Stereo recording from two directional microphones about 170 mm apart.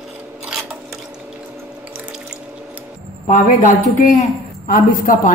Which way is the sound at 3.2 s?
50° left (ahead or behind).